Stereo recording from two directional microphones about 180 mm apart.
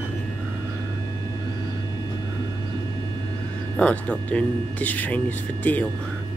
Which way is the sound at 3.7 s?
5° left (ahead or behind).